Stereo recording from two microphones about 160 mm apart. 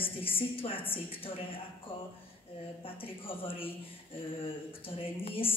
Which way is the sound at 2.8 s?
35° left (ahead or behind).